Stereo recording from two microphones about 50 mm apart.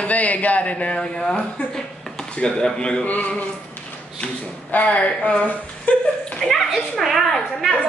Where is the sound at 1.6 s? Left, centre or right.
Left.